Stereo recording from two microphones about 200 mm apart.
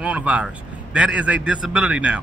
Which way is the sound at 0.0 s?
5° right (ahead or behind).